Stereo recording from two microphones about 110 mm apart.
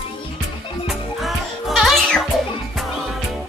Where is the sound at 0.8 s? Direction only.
Centre (ahead or behind).